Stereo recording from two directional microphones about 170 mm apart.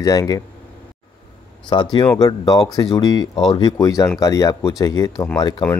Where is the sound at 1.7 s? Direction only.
25° left (ahead or behind).